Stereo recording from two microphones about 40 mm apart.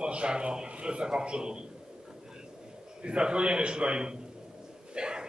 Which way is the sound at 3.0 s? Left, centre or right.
Right.